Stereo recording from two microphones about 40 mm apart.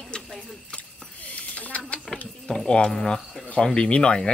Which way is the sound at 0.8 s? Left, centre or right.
Left.